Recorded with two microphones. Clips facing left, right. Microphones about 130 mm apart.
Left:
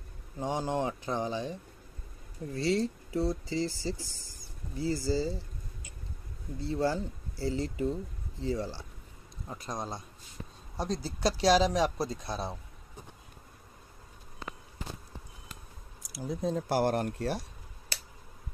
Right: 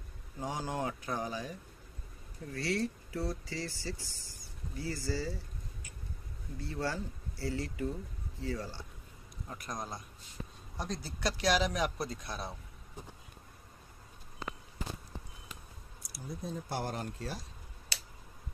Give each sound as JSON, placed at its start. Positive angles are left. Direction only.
{"t": 0.4, "sound": "speech", "side_deg": 25}
{"t": 6.6, "sound": "speech", "side_deg": 25}
{"t": 16.2, "sound": "speech", "side_deg": 90}